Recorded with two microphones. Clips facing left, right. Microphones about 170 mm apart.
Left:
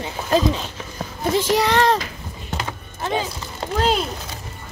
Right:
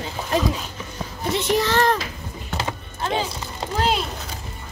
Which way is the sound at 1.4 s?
75° left (ahead or behind).